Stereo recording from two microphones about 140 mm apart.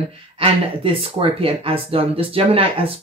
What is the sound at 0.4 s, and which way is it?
Speech, 40° right (ahead or behind).